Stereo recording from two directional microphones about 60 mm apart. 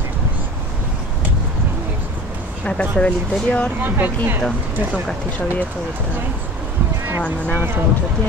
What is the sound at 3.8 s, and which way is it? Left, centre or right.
Speech, right.